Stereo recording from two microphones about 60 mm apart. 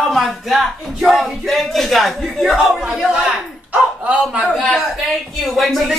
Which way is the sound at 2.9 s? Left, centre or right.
Centre.